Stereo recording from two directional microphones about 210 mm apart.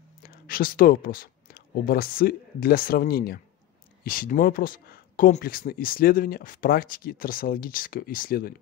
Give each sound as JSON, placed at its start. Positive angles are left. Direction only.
{"t": 0.2, "sound": "speech", "side_deg": 45}